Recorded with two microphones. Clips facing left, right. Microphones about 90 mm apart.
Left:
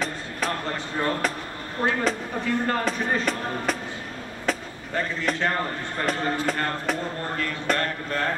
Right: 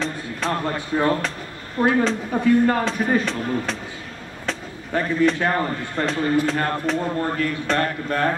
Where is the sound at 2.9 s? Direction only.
5° left (ahead or behind).